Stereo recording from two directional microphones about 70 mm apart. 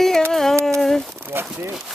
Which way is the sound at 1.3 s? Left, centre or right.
Right.